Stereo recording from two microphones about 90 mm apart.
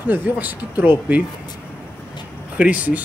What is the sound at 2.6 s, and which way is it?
Speech, 15° right (ahead or behind).